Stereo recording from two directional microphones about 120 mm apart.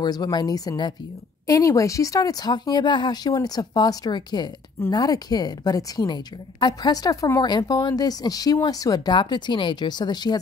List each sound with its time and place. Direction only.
0.0 s a woman's voice: 35° left (ahead or behind)